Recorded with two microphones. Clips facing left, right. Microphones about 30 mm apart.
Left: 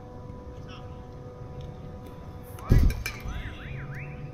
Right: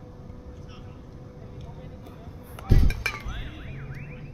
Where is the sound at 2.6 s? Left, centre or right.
Right.